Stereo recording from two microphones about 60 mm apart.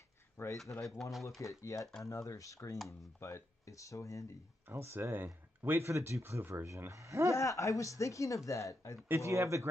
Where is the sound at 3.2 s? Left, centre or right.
Left.